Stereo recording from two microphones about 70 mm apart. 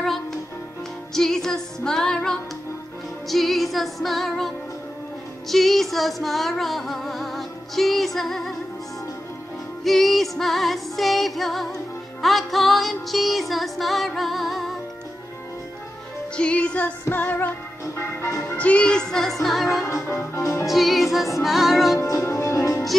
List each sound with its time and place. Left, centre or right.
1.1 s music: centre
5.5 s music: centre
9.8 s music: centre
16.3 s music: centre
17.9 s music: left
18.6 s music: centre
19.8 s music: left
20.6 s music: centre
22.0 s music: left